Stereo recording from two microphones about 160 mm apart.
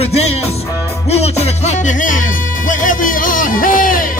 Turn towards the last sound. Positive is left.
turn(degrees=60)  # may be behind; listen again after turning